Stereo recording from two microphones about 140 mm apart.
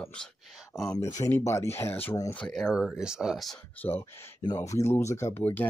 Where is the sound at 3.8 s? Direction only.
15° left (ahead or behind).